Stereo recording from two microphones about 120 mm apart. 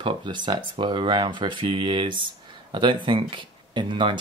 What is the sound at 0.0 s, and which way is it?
Speech, 45° right (ahead or behind).